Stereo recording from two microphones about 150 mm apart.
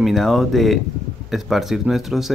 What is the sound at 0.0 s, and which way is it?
Speech, centre (ahead or behind).